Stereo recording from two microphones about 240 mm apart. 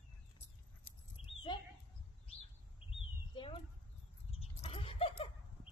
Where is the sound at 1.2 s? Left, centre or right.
Left.